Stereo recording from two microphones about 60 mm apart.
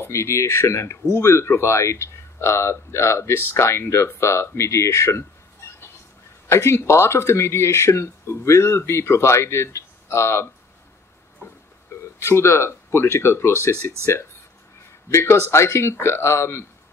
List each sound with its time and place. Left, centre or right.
0.0 s speech: left
6.4 s speech: left
12.2 s speech: left
15.0 s speech: left